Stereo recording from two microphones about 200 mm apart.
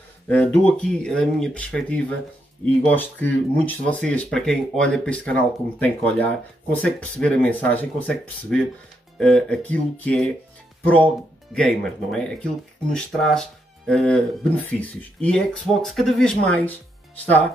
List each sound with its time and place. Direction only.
0.3 s speech: 10° left (ahead or behind)
11.5 s speech: 5° left (ahead or behind)